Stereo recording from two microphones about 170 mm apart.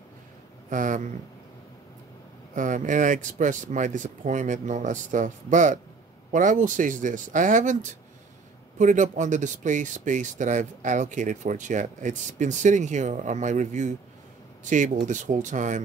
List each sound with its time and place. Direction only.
0.7 s speech: 50° right (ahead or behind)
2.5 s speech: 50° right (ahead or behind)